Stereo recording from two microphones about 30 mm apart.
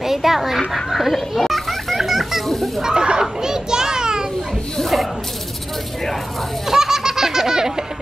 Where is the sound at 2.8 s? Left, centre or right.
Right.